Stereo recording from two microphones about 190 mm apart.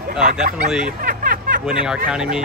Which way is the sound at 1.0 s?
50° right (ahead or behind).